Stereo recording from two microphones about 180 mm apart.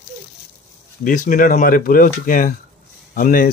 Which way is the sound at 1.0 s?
50° left (ahead or behind).